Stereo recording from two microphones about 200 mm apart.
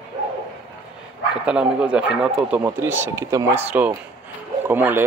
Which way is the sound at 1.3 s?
5° right (ahead or behind).